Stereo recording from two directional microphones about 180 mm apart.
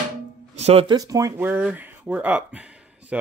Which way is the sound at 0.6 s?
35° right (ahead or behind).